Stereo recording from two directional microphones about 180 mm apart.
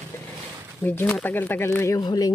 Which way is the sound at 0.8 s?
10° left (ahead or behind).